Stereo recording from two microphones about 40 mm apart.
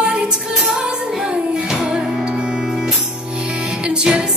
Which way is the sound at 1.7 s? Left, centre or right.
Centre.